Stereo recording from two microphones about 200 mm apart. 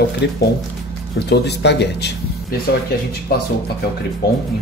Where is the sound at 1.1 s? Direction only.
55° left (ahead or behind).